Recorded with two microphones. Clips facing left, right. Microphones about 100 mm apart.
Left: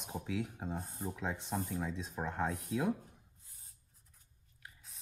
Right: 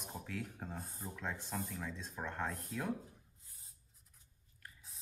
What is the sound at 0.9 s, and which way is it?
Speech, 25° left (ahead or behind).